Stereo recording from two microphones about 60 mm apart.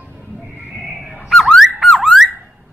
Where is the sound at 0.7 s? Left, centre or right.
Centre.